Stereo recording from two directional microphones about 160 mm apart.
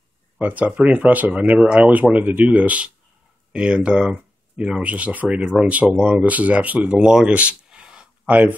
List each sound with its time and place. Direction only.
0.4 s speech: 10° right (ahead or behind)